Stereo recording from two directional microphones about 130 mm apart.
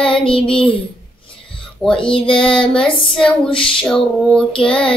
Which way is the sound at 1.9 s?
40° left (ahead or behind).